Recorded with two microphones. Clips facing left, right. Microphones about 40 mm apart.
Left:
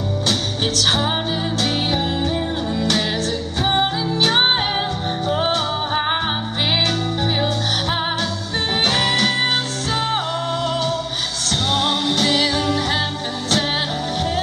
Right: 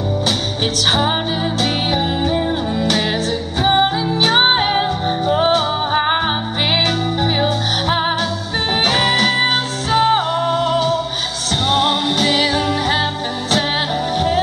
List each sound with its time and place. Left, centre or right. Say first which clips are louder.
0.7 s music: right 3 dB; centre
14.1 s music: right 6 dB; centre